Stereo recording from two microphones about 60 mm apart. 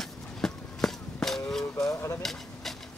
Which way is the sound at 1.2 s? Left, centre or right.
Centre.